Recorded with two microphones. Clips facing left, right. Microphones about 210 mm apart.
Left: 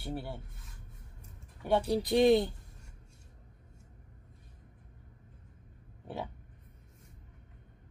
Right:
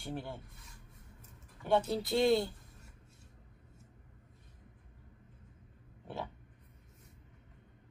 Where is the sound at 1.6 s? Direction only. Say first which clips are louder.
Left 2 dB; 15° left (ahead or behind).